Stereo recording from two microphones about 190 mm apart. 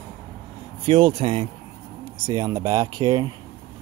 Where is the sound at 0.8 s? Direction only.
30° right (ahead or behind).